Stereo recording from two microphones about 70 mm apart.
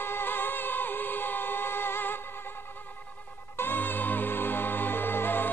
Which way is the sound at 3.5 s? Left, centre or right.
Left.